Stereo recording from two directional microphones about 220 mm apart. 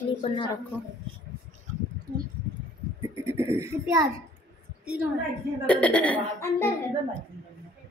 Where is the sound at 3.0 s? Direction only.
10° right (ahead or behind).